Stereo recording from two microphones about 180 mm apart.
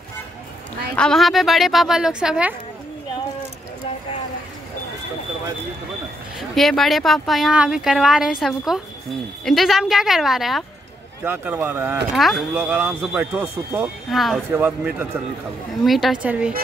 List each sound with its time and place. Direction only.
0.9 s speech: 5° left (ahead or behind)
6.5 s speech: centre (ahead or behind)
12.2 s speech: centre (ahead or behind)
12.5 s speech: 10° right (ahead or behind)